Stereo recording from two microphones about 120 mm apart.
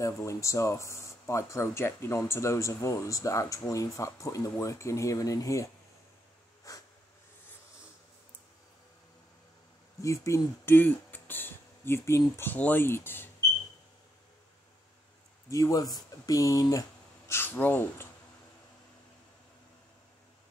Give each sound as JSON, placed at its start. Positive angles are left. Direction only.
{"t": 0.0, "sound": "speech", "side_deg": 25}
{"t": 6.7, "sound": "snort", "side_deg": 30}
{"t": 10.0, "sound": "speech", "side_deg": 25}
{"t": 15.5, "sound": "speech", "side_deg": 30}
{"t": 17.3, "sound": "speech", "side_deg": 15}